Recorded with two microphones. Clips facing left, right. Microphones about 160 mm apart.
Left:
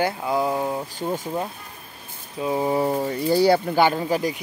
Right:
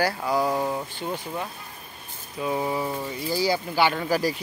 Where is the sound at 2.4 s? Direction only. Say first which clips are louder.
Left 4 dB; 20° left (ahead or behind).